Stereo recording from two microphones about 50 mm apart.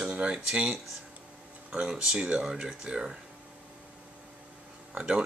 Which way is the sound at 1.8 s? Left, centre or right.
Centre.